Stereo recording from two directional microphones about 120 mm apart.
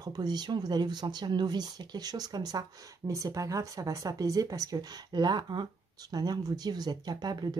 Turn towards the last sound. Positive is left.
turn(degrees=-35)  # may be behind; listen again after turning